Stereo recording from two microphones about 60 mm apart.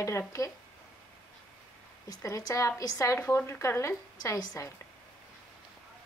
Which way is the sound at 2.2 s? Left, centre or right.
Left.